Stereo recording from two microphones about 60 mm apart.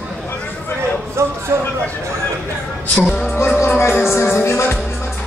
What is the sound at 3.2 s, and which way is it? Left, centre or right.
Music, left.